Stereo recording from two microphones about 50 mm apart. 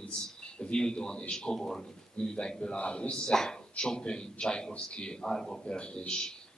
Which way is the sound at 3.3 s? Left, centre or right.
Centre.